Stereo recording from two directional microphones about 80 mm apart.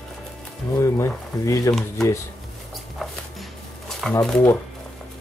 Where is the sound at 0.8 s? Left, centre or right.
Left.